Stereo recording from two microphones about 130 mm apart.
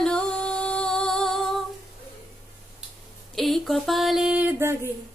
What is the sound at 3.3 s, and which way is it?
Music, centre (ahead or behind).